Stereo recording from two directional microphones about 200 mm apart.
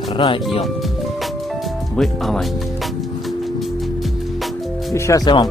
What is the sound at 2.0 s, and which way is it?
Speech, centre (ahead or behind).